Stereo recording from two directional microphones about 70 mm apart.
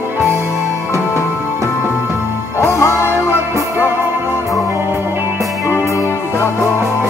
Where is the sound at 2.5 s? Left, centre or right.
Left.